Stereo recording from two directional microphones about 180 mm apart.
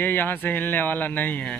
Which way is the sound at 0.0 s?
10° left (ahead or behind).